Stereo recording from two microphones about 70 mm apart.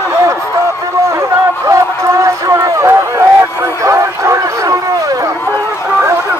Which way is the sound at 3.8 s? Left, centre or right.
Right.